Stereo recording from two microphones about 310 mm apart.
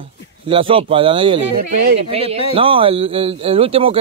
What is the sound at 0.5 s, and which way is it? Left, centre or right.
A man's voice, centre.